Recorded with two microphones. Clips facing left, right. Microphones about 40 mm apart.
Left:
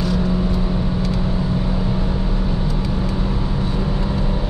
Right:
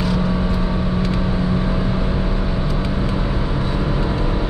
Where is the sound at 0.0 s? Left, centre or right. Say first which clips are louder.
Even; centre.